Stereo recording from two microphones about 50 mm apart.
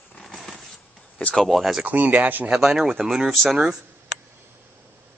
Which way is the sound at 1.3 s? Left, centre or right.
Centre.